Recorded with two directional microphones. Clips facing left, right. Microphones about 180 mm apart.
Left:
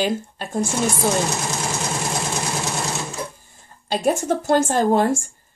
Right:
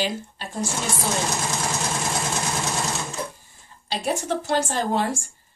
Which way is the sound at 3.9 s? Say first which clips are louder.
Left 5 dB; 50° left (ahead or behind).